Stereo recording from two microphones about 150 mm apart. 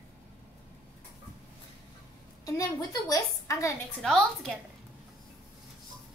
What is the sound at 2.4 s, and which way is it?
A woman's voice, 25° left (ahead or behind).